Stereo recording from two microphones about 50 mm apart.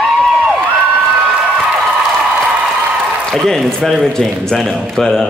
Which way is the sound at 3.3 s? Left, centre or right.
Centre.